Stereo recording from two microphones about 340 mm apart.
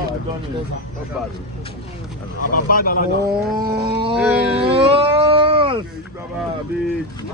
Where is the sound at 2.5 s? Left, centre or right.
Left.